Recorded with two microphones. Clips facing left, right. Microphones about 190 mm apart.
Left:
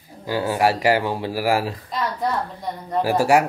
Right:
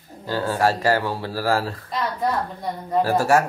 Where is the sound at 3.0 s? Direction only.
15° left (ahead or behind).